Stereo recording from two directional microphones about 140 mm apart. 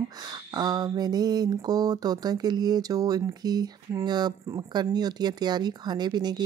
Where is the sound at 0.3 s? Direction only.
30° right (ahead or behind).